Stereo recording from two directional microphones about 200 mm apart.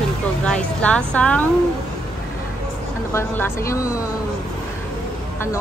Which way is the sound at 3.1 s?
15° left (ahead or behind).